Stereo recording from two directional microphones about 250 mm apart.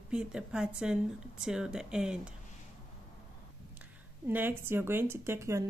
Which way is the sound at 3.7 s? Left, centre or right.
Centre.